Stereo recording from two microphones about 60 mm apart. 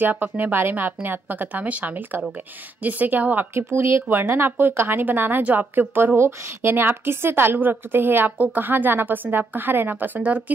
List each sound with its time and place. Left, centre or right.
0.0 s a woman's voice: right
3.5 s speech: right
4.1 s a woman's voice: right